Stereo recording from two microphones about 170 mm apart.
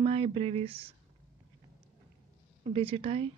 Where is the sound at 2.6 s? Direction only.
35° right (ahead or behind).